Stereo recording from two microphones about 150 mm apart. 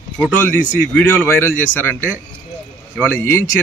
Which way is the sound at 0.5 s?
10° left (ahead or behind).